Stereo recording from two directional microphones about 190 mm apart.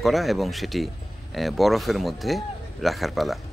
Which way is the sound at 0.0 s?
Centre (ahead or behind).